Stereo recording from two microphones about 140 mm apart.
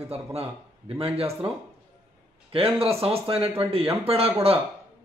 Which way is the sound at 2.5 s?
45° right (ahead or behind).